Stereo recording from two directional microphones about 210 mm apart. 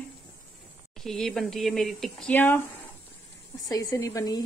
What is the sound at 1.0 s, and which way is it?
Speech, centre (ahead or behind).